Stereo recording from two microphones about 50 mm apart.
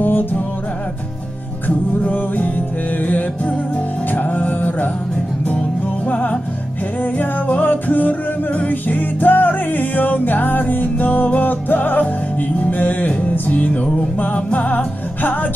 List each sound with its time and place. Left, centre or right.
0.0 s music: left
2.0 s music: left
6.0 s music: left